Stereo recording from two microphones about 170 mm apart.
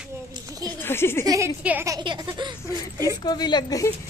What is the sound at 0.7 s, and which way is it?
Speech, 15° left (ahead or behind).